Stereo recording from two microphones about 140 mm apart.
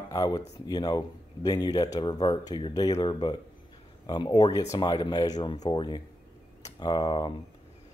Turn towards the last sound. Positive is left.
turn(degrees=35)  # may be behind; listen again after turning